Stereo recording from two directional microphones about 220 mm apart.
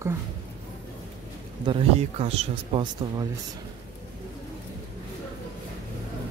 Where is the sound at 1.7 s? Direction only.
25° right (ahead or behind).